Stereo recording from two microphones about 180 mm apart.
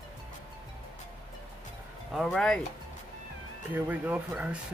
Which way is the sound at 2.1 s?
Centre (ahead or behind).